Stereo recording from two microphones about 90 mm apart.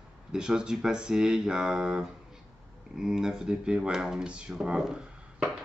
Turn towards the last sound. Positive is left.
turn(degrees=-10)  # may be behind; listen again after turning